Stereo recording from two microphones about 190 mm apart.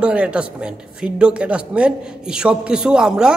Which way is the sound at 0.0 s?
5° right (ahead or behind).